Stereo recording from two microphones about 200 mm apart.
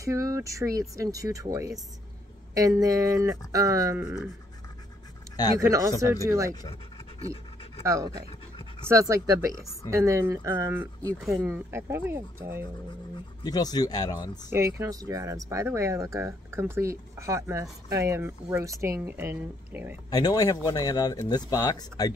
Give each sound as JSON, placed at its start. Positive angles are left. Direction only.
{"t": 0.0, "sound": "speech", "side_deg": -15}
{"t": 5.3, "sound": "speech", "side_deg": 20}
{"t": 5.6, "sound": "speech", "side_deg": -15}
{"t": 6.5, "sound": "scratch", "side_deg": 25}
{"t": 7.8, "sound": "speech", "side_deg": -15}
{"t": 13.4, "sound": "speech", "side_deg": 20}
{"t": 14.5, "sound": "speech", "side_deg": -15}
{"t": 20.1, "sound": "speech", "side_deg": 20}